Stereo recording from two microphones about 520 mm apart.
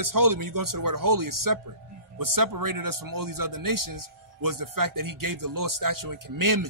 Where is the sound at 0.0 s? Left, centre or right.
Right.